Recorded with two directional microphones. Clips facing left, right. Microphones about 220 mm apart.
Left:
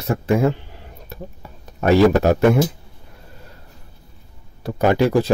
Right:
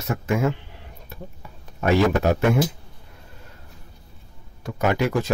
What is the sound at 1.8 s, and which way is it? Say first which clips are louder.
Speech: left 5 dB; 40° left (ahead or behind).